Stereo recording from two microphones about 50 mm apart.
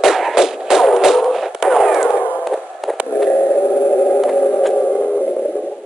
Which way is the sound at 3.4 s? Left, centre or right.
Left.